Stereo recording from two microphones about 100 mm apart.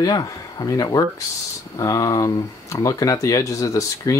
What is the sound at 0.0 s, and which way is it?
Speech, 40° left (ahead or behind).